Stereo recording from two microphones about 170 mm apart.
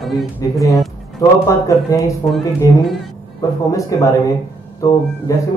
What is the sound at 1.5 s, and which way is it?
Speech, 20° left (ahead or behind).